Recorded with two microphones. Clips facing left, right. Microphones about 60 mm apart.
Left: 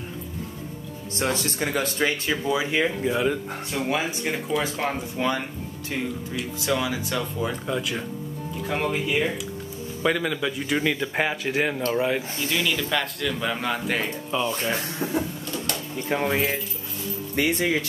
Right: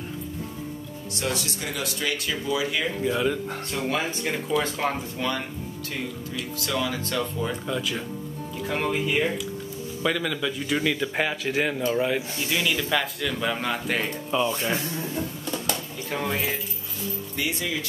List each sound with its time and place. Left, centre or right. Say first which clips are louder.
1.2 s speech: left 4 dB; left
3.0 s speech: left 1 dB; centre
6.6 s speech: left 2 dB; centre
10.0 s speech: left 2 dB; centre
12.5 s speech: even; right
12.9 s speech: even; centre
16.1 s speech: left 4 dB; left
17.4 s speech: left 7 dB; left